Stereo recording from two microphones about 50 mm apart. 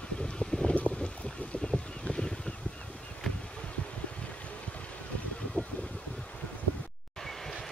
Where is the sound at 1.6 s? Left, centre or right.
Centre.